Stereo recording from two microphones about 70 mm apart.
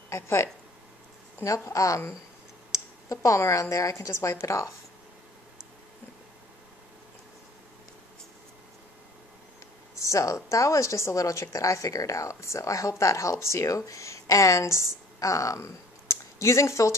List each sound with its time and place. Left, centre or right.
0.1 s speech: left
1.7 s a woman's voice: left
9.9 s a woman's voice: left